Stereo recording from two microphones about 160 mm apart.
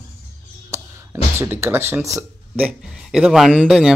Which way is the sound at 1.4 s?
15° right (ahead or behind).